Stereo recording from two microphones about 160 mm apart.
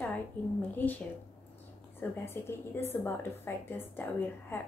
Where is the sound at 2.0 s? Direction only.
15° left (ahead or behind).